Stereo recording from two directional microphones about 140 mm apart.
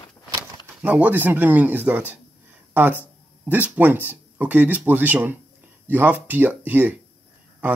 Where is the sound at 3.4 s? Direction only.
10° right (ahead or behind).